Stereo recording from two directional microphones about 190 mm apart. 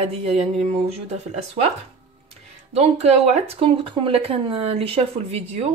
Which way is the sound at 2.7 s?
35° right (ahead or behind).